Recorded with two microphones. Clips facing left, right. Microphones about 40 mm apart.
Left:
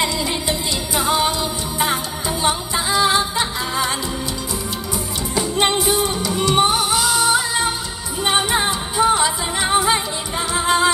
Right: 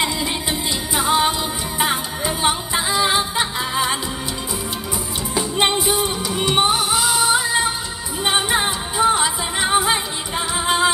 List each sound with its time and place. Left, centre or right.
0.0 s music: centre
5.4 s music: centre